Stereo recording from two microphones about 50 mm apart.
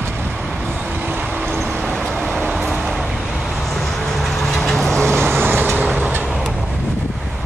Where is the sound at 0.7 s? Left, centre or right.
Right.